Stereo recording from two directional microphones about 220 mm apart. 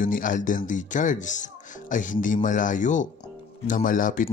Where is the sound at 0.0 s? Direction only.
35° left (ahead or behind).